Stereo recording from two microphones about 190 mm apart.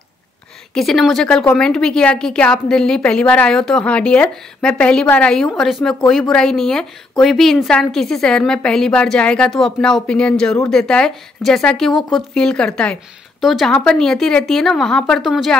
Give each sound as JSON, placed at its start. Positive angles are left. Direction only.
{"t": 0.7, "sound": "a woman's voice", "side_deg": 0}